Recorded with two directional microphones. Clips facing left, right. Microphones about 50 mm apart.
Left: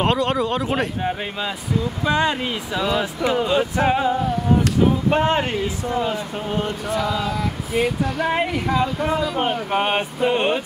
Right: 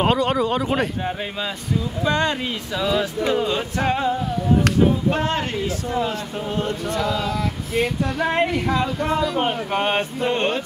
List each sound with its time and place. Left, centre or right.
0.0 s speech: centre
5.1 s speech: left
5.6 s speech: centre